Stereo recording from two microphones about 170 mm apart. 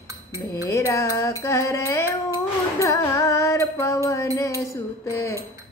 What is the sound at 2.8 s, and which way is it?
Music, 15° left (ahead or behind).